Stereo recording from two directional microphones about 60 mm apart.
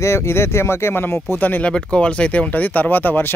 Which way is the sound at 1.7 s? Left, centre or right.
Centre.